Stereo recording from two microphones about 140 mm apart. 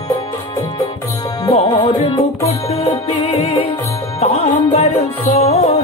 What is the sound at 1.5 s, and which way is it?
Music, 45° left (ahead or behind).